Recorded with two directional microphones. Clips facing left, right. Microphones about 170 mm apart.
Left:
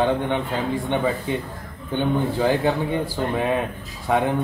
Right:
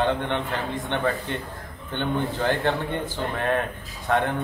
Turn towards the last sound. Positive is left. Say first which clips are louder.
# left 3 dB
turn(degrees=10)  # may be behind; listen again after turning